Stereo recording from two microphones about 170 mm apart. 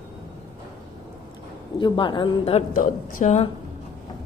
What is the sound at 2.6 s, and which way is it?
Speech, 50° left (ahead or behind).